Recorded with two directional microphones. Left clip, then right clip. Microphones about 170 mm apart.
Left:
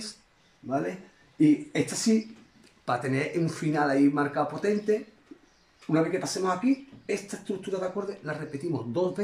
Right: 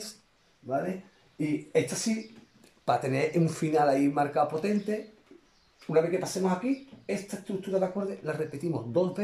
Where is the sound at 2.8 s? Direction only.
15° right (ahead or behind).